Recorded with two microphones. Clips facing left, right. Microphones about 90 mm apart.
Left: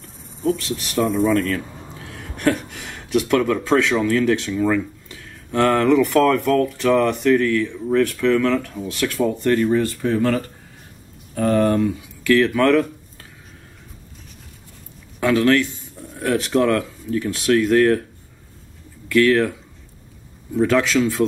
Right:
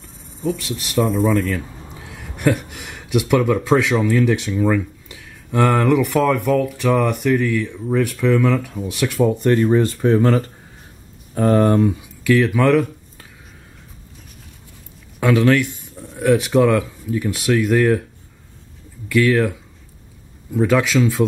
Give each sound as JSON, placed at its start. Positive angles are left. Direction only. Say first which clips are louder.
{"t": 0.0, "sound": "cricket", "louder": "left 2 dB", "side_deg": 0}
{"t": 0.9, "sound": "speech", "louder": "right 1 dB", "side_deg": 0}
{"t": 2.0, "sound": "speech", "louder": "right 1 dB", "side_deg": -10}
{"t": 12.2, "sound": "a sound", "louder": "even", "side_deg": -15}
{"t": 15.3, "sound": "speech", "louder": "even", "side_deg": -15}
{"t": 19.0, "sound": "speech", "louder": "even", "side_deg": -5}
{"t": 20.5, "sound": "speech", "louder": "right 1 dB", "side_deg": -5}